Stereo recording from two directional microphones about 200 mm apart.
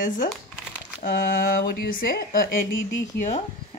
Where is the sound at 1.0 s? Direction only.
45° left (ahead or behind).